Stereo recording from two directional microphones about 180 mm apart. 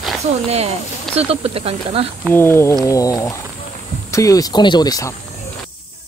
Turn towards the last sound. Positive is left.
turn(degrees=20)  # may be behind; listen again after turning